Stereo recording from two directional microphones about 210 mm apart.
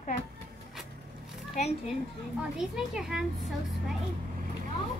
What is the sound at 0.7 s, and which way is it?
Vehicle, centre (ahead or behind).